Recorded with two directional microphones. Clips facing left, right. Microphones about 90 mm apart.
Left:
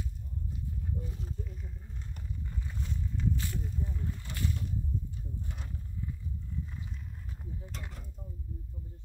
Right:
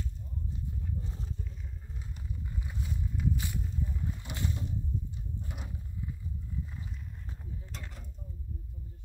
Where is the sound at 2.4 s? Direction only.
10° right (ahead or behind).